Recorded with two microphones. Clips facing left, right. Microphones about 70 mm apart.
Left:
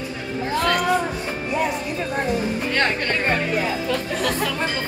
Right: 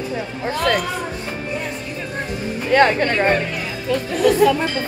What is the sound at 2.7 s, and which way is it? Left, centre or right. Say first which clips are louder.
Speech: right 10 dB; centre.